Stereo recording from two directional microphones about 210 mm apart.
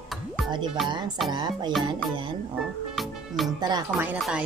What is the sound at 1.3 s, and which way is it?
Speech, 20° right (ahead or behind).